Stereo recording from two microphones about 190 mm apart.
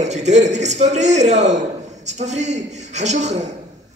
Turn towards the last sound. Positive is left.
turn(degrees=-35)  # may be behind; listen again after turning